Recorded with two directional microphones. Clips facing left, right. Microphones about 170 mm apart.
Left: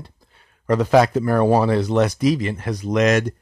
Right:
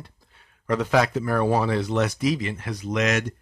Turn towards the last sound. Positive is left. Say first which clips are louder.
# left 6 dB
turn(degrees=40)  # may be behind; listen again after turning